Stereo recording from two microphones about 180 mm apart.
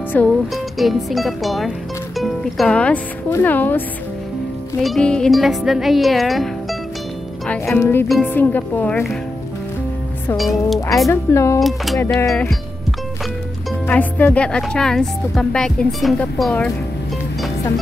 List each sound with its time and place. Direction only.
0.1 s a woman's voice: 10° left (ahead or behind)
4.8 s a woman's voice: 5° left (ahead or behind)
10.3 s a woman's voice: centre (ahead or behind)
11.1 s speech: 15° left (ahead or behind)
11.6 s a woman's voice: centre (ahead or behind)
12.2 s speech: 15° left (ahead or behind)
13.8 s a woman's voice: 10° left (ahead or behind)